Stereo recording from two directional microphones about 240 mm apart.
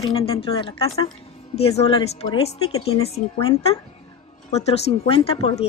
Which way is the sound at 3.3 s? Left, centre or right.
Centre.